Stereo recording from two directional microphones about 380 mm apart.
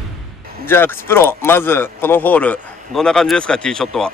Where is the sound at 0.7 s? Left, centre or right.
Centre.